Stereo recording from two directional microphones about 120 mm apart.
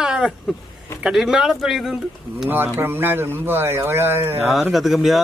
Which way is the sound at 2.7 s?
20° right (ahead or behind).